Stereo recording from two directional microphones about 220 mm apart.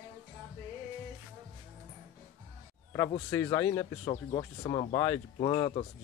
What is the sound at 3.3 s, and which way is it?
Speech, 15° left (ahead or behind).